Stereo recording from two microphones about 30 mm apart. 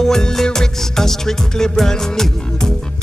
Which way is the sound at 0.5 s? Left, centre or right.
Centre.